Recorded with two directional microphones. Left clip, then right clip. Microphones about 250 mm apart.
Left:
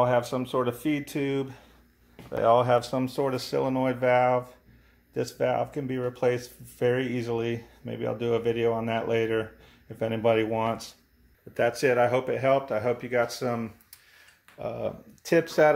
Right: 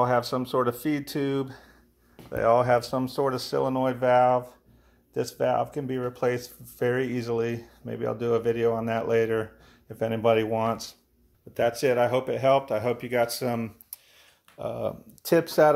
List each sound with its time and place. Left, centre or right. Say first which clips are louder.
0.3 s speech: right 2 dB; right